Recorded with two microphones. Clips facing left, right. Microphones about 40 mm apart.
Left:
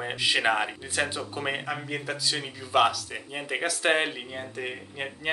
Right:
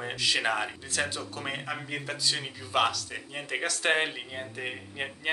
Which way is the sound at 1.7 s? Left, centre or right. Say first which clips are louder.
Left 3 dB; centre.